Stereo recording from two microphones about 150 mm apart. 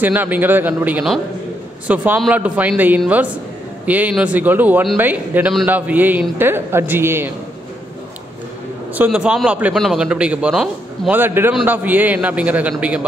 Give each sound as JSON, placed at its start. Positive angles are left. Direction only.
{"t": 0.0, "sound": "a man's voice", "side_deg": -10}
{"t": 8.9, "sound": "a man's voice", "side_deg": -10}